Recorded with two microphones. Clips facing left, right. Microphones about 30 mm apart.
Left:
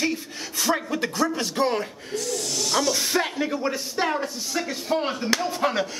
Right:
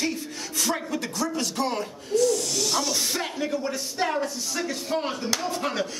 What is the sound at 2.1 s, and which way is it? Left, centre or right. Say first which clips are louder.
Speech: right 5 dB; centre.